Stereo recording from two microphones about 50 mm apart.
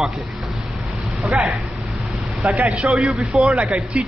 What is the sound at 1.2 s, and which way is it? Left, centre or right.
Speech, centre.